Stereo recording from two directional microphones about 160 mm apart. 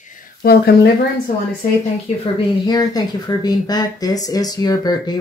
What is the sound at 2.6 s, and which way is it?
Speech, 25° left (ahead or behind).